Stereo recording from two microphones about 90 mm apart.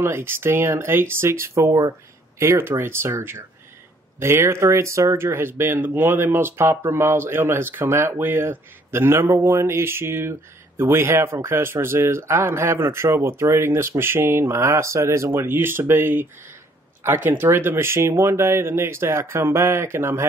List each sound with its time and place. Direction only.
0.0 s speech: 25° right (ahead or behind)